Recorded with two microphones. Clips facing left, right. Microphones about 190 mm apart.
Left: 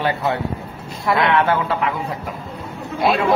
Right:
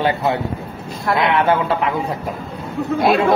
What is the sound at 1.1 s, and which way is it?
Speech, 5° left (ahead or behind).